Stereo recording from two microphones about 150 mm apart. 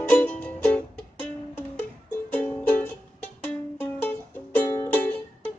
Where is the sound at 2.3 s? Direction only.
15° left (ahead or behind).